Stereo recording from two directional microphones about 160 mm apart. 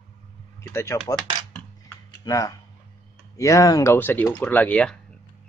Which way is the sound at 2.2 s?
20° left (ahead or behind).